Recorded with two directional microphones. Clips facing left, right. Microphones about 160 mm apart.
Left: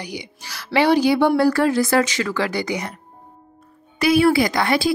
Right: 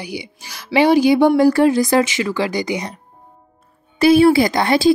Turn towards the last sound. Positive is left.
turn(degrees=-25)  # may be behind; listen again after turning